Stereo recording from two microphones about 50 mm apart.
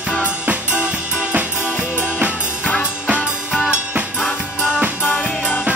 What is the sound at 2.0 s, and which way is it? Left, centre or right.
Music, right.